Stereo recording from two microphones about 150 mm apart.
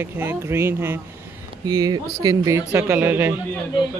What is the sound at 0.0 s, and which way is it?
Speech, 15° right (ahead or behind).